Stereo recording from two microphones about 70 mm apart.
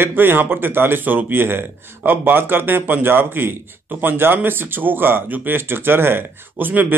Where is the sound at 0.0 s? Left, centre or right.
Right.